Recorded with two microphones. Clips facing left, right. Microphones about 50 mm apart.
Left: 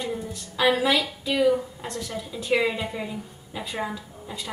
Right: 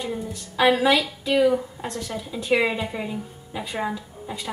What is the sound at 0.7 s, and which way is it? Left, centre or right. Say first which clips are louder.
A woman's voice: right 3 dB; centre.